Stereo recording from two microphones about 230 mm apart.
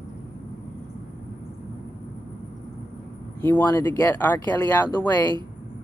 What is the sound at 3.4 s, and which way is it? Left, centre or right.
Speech, centre.